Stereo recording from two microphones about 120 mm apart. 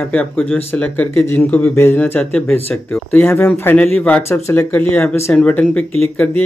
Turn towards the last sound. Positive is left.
turn(degrees=15)  # may be behind; listen again after turning